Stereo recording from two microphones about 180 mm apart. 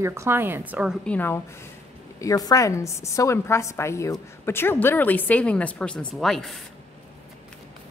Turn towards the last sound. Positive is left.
turn(degrees=0)  # may be behind; listen again after turning